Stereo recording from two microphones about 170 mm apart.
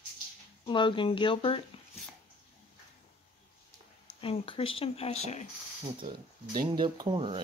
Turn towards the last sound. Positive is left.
turn(degrees=-30)  # may be behind; listen again after turning